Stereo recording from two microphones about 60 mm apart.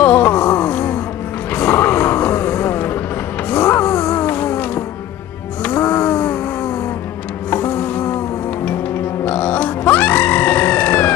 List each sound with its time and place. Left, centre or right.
0.0 s wail: left
1.5 s music: left
3.4 s a sound: left
5.6 s music: left
7.5 s music: left
9.2 s grunt: left